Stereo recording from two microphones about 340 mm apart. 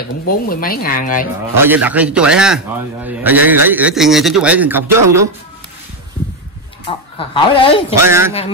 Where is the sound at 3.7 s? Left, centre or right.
Centre.